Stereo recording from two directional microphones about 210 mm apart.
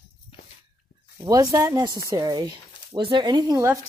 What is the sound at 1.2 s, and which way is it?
Speech, 15° right (ahead or behind).